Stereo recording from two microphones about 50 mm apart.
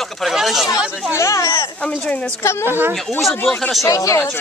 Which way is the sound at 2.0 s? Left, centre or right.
Left.